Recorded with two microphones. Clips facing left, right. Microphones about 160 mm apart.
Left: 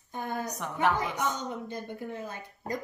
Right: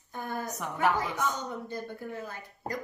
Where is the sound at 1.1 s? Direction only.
20° left (ahead or behind).